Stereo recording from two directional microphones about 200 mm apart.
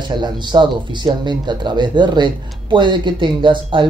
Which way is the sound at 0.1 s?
20° right (ahead or behind).